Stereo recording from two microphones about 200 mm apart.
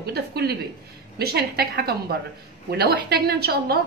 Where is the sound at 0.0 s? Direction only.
55° right (ahead or behind).